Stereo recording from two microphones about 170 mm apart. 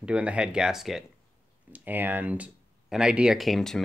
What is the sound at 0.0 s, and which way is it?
Speech, 5° right (ahead or behind).